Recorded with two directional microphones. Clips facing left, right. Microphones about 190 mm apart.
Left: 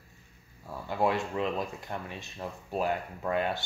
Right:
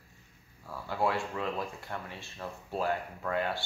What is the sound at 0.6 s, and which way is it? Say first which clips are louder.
Speech: left 2 dB; 20° left (ahead or behind).